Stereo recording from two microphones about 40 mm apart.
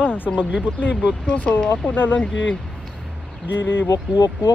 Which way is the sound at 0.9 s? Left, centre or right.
Right.